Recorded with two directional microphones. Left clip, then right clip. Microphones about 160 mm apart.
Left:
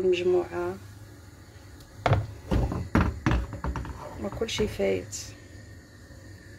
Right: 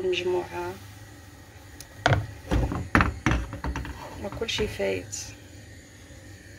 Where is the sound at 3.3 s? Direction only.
20° right (ahead or behind).